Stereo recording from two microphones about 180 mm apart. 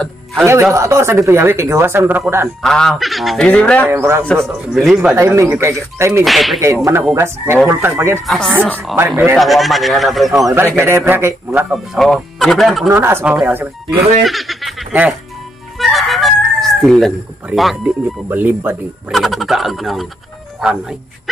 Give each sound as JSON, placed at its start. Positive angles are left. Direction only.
{"t": 0.0, "sound": "music", "side_deg": 0}
{"t": 0.7, "sound": "speech", "side_deg": -15}
{"t": 2.6, "sound": "speech", "side_deg": 5}
{"t": 5.1, "sound": "speech", "side_deg": -15}
{"t": 6.2, "sound": "speech", "side_deg": 0}
{"t": 6.6, "sound": "speech", "side_deg": -15}
{"t": 8.3, "sound": "speech", "side_deg": 0}
{"t": 9.4, "sound": "speech", "side_deg": 0}
{"t": 10.8, "sound": "speech", "side_deg": -15}
{"t": 11.7, "sound": "speech", "side_deg": 0}
{"t": 12.9, "sound": "speech", "side_deg": -15}